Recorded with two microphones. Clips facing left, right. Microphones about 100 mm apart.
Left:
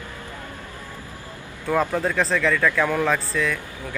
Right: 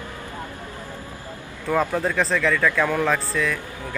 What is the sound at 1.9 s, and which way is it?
Speech, centre (ahead or behind).